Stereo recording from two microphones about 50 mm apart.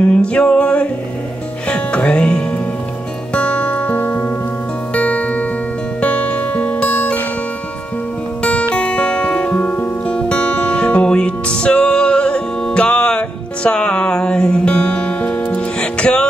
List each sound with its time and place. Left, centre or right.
0.0 s music: left
8.4 s music: left